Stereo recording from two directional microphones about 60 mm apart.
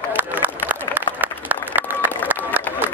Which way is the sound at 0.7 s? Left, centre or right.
Right.